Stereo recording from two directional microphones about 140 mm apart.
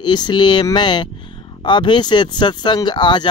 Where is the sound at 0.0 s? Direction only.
30° left (ahead or behind).